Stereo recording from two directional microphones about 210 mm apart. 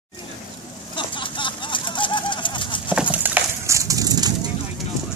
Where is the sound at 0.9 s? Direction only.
25° left (ahead or behind).